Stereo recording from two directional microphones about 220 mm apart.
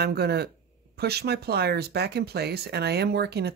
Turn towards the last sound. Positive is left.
turn(degrees=-45)  # may be behind; listen again after turning